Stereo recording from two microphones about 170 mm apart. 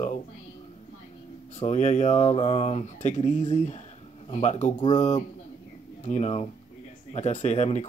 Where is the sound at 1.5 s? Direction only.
45° left (ahead or behind).